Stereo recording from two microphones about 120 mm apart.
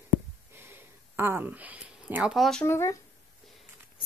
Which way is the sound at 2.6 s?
20° left (ahead or behind).